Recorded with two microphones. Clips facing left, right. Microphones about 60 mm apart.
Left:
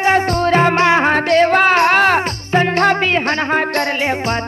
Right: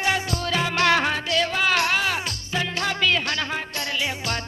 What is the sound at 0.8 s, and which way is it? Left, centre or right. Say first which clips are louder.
Music: left 7 dB; left.